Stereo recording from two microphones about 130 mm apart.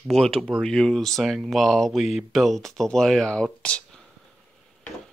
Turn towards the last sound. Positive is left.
turn(degrees=10)  # may be behind; listen again after turning